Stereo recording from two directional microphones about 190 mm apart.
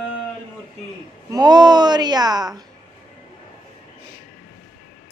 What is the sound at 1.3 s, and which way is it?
Speech, 20° right (ahead or behind).